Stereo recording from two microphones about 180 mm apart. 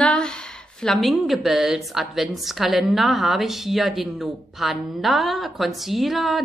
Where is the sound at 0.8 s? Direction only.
Centre (ahead or behind).